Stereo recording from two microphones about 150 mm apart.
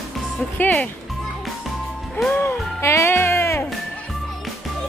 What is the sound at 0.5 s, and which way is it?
Speech, 10° left (ahead or behind).